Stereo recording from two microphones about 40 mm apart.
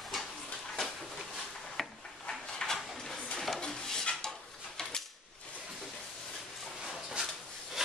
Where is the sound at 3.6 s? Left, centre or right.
Left.